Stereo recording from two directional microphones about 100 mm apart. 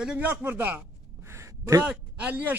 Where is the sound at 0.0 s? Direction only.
15° right (ahead or behind).